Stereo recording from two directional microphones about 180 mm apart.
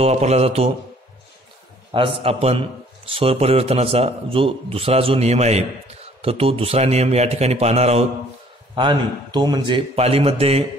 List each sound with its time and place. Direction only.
0.0 s a man's voice: 35° right (ahead or behind)
1.9 s a man's voice: 30° right (ahead or behind)
8.7 s a man's voice: 25° right (ahead or behind)